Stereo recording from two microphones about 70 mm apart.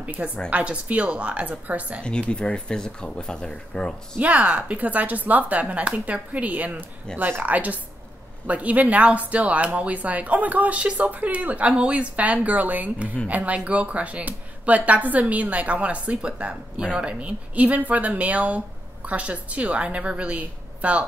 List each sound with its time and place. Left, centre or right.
0.0 s a woman's voice: centre
2.0 s speech: centre
4.2 s speech: centre